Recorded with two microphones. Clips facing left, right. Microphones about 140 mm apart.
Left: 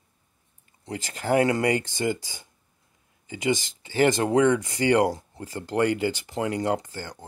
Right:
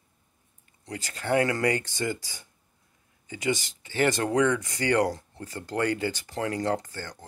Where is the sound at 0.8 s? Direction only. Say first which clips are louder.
Left 3 dB; 25° left (ahead or behind).